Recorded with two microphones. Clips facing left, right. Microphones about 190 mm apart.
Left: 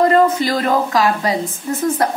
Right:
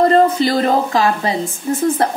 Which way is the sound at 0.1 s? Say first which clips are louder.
Right 1 dB; 30° right (ahead or behind).